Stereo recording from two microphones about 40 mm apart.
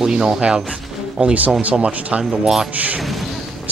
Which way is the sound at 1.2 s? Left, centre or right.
Right.